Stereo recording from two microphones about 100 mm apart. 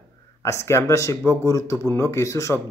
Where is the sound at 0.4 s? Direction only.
30° left (ahead or behind).